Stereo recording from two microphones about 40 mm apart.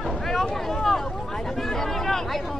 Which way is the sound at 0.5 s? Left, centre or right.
Centre.